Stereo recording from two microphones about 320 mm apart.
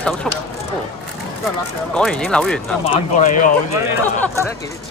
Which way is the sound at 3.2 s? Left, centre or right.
Left.